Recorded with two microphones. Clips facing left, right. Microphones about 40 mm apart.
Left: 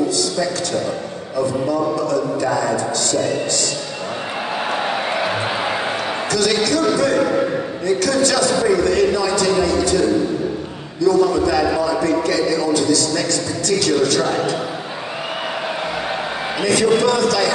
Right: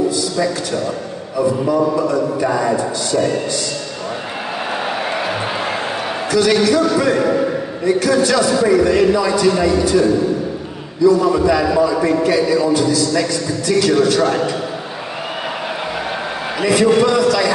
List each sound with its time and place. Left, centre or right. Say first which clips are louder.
1.3 s a man's voice: right 3 dB; centre
6.3 s a man's voice: right 5 dB; centre
16.6 s a man's voice: right 3 dB; centre